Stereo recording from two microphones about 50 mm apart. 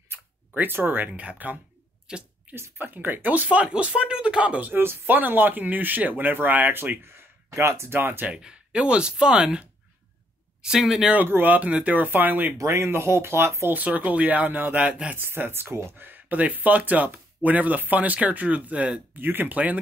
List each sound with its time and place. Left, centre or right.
0.6 s speech: right
2.1 s speech: centre
2.5 s a sound: right
2.8 s speech: right
3.6 s speech: right
4.7 s speech: right
7.4 s speech: right
8.3 s speech: centre
10.8 s speech: centre
11.4 s speech: right
12.5 s speech: right
13.7 s speech: right
15.1 s speech: right
19.1 s speech: right